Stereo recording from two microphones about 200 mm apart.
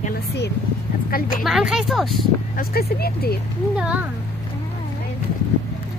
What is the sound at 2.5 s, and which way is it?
Speech, 50° left (ahead or behind).